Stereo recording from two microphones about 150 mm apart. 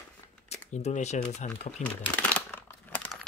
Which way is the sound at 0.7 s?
50° left (ahead or behind).